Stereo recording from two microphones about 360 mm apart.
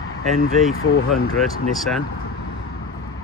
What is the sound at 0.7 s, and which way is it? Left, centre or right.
Speech, left.